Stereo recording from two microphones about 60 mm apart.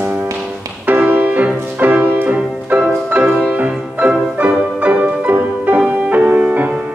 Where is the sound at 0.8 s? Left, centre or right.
Right.